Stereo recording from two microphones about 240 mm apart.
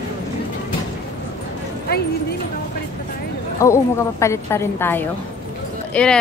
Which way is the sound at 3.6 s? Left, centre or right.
Centre.